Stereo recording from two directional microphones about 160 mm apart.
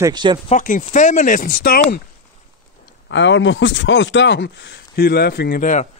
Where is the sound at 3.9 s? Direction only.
90° left; by 5.9 s 50° left (ahead or behind).